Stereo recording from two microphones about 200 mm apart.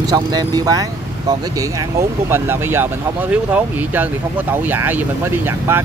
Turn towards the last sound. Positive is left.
turn(degrees=-10)  # may be behind; listen again after turning